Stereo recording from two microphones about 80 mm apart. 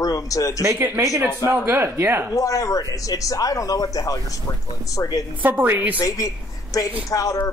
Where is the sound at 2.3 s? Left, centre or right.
Left.